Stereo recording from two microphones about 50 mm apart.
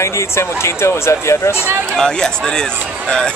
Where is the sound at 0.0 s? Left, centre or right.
Left.